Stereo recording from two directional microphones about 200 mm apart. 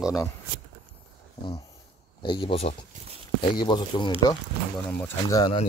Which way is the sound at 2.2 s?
25° left (ahead or behind).